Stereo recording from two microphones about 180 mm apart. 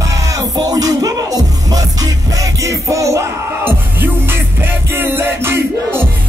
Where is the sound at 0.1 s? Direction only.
20° right (ahead or behind).